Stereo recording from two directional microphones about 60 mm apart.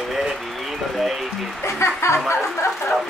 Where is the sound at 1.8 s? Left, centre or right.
Left.